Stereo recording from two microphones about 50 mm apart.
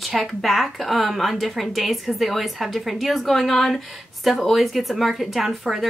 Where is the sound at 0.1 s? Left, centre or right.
Centre.